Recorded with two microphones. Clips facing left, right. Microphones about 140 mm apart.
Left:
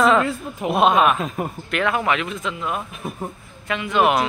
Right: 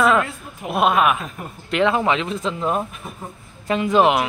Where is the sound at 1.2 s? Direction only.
90° left.